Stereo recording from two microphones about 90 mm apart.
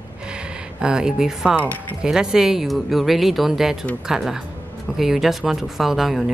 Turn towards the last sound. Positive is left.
turn(degrees=-5)  # may be behind; listen again after turning